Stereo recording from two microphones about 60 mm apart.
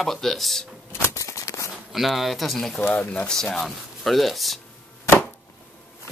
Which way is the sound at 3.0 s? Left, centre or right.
Left.